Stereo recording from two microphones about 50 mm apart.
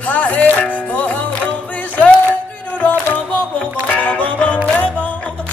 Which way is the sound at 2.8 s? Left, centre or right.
Left.